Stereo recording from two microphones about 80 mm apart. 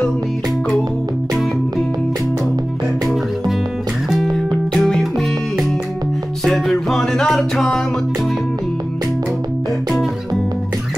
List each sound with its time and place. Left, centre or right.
4.7 s music: centre
6.4 s music: centre